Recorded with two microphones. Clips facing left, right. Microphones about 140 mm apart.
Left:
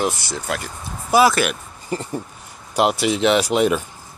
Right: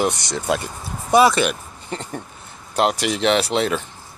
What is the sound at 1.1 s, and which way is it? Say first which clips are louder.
Speech: right 1 dB; centre (ahead or behind).